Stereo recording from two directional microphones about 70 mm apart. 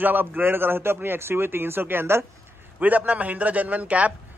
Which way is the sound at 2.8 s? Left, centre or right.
Right.